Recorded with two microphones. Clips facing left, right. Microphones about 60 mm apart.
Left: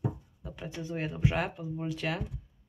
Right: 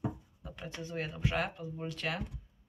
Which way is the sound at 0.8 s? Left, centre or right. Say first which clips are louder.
Left 5 dB; centre.